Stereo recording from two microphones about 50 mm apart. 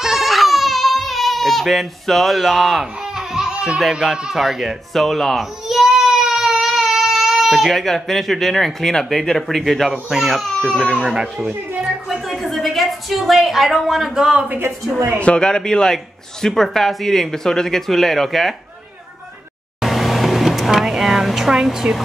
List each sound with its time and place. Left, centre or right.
0.0 s baby cry: centre
3.5 s music: centre
4.0 s speech: centre
10.0 s speech: centre
10.3 s speech: centre
11.0 s speech: centre
11.8 s a woman's voice: centre
15.1 s speech: left; by 18.5 s centre
19.8 s a sound: centre
21.8 s air conditioning: right